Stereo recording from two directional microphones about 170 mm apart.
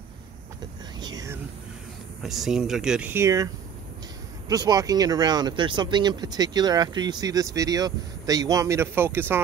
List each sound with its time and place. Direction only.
0.9 s whispering: 25° right (ahead or behind)
2.2 s speech: centre (ahead or behind)
4.5 s speech: 20° right (ahead or behind)